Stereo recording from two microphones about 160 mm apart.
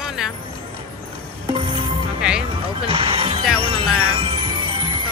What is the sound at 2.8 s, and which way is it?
Speech, 35° right (ahead or behind).